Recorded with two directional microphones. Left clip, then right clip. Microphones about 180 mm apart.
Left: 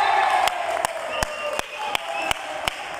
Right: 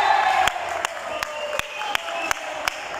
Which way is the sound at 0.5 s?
30° left (ahead or behind).